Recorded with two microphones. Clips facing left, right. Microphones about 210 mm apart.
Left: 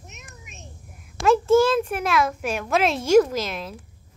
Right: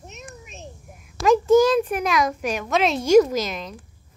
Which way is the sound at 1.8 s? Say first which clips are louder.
Right 1 dB; centre (ahead or behind).